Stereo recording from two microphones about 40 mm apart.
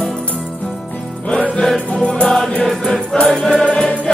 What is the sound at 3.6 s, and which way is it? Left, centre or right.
Music, left.